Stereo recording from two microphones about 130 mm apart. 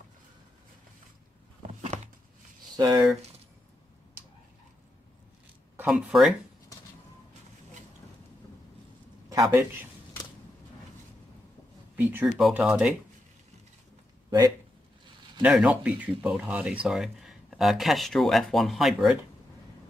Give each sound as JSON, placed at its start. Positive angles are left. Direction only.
{"t": 2.7, "sound": "speech", "side_deg": -30}
{"t": 5.8, "sound": "speech", "side_deg": -10}
{"t": 9.3, "sound": "a sound", "side_deg": -25}
{"t": 12.0, "sound": "speech", "side_deg": -15}
{"t": 15.4, "sound": "speech", "side_deg": -5}